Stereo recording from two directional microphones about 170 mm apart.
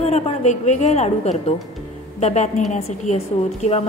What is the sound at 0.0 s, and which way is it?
A woman's voice, 40° left (ahead or behind).